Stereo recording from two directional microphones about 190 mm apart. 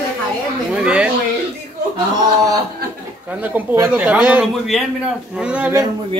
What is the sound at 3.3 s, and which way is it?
A man's voice, 10° right (ahead or behind).